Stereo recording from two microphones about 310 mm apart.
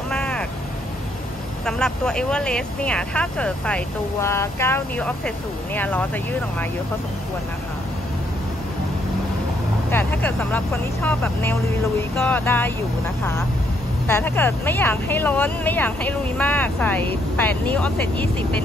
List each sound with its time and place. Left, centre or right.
0.1 s vehicle: centre
1.7 s speech: centre
9.8 s speech: centre
14.0 s speech: centre